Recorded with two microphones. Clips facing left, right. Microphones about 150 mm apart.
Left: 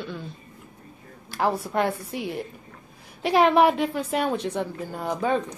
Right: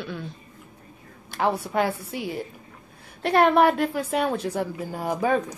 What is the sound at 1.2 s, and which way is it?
A woman's voice, centre (ahead or behind).